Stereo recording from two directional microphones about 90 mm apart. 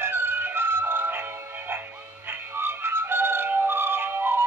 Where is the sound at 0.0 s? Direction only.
25° right (ahead or behind).